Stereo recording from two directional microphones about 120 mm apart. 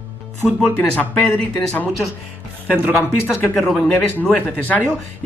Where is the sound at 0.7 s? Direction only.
15° left (ahead or behind).